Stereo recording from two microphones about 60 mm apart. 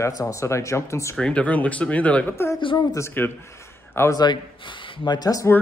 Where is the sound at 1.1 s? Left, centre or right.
Centre.